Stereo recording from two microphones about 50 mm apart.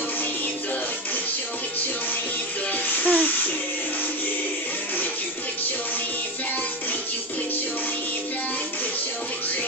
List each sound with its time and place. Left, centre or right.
2.7 s music: left